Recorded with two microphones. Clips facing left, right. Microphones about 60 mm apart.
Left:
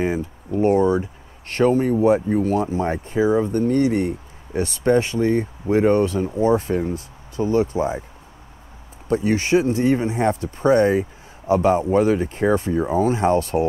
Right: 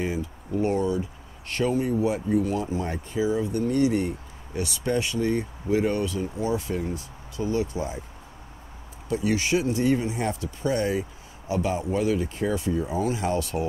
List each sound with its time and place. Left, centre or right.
0.0 s speech: left
9.1 s speech: left